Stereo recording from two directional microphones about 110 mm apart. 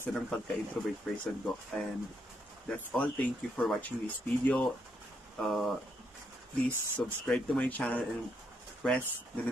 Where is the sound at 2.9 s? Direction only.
10° left (ahead or behind).